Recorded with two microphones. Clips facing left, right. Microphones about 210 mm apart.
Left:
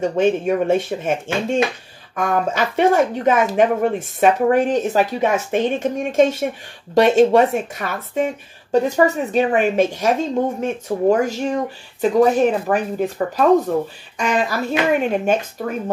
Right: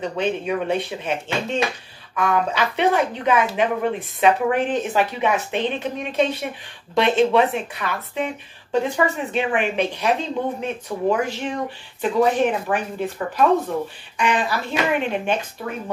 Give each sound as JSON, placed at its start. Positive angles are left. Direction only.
{"t": 0.0, "sound": "a woman's voice", "side_deg": 45}